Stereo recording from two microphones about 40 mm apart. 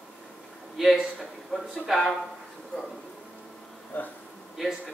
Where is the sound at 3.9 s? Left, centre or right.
Left.